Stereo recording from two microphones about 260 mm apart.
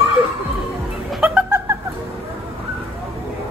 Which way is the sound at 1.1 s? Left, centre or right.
Centre.